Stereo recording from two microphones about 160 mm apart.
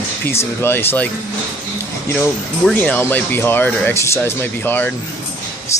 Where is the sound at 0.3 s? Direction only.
15° left (ahead or behind).